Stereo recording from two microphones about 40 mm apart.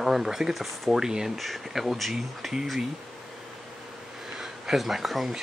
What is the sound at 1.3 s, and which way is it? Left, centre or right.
Speech, centre.